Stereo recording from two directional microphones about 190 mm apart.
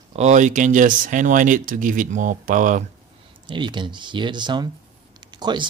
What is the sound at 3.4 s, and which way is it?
Speech, 25° right (ahead or behind).